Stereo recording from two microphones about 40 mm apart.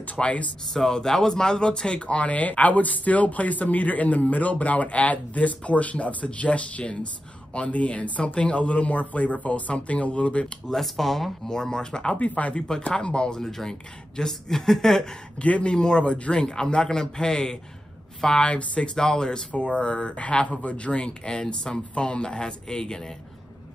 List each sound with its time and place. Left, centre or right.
0.0 s speech: left
0.7 s speech: centre; by 10.5 s left
10.7 s speech: centre
11.4 s speech: centre
12.2 s speech: left
12.9 s speech: left
13.4 s speech: centre
15.3 s speech: left
15.7 s speech: centre
18.4 s speech: left
18.9 s speech: centre
19.5 s speech: left